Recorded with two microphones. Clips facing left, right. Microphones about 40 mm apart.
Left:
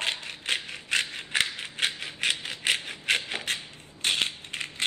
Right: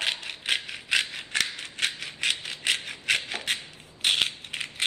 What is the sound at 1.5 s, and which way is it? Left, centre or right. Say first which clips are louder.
Rattle: even; left.